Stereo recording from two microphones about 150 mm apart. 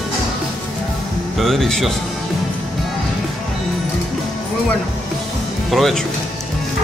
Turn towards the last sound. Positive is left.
turn(degrees=0)  # may be behind; listen again after turning